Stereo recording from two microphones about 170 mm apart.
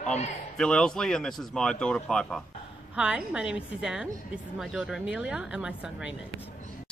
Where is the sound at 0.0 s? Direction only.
40° left (ahead or behind).